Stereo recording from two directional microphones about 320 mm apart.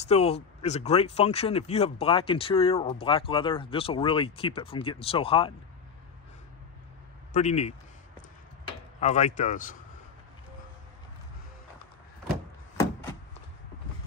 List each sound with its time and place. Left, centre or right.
0.0 s speech: centre
7.3 s speech: left
9.0 s speech: left